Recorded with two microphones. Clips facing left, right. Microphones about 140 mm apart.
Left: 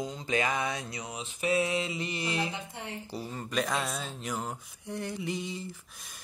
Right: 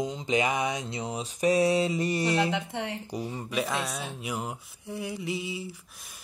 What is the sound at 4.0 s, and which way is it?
Speech, 10° right (ahead or behind).